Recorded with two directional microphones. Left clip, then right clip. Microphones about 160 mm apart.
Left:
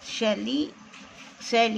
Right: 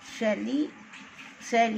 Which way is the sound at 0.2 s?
20° left (ahead or behind).